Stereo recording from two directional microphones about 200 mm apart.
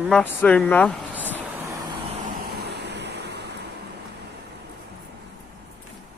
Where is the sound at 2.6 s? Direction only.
55° right (ahead or behind).